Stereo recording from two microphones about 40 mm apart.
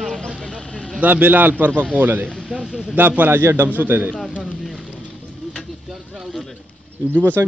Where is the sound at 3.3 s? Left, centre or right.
Right.